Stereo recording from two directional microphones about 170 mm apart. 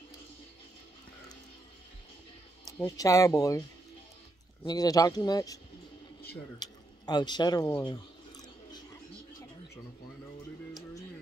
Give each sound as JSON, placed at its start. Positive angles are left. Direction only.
{"t": 2.6, "sound": "speech", "side_deg": 20}
{"t": 4.6, "sound": "speech", "side_deg": 20}
{"t": 6.6, "sound": "speech", "side_deg": 25}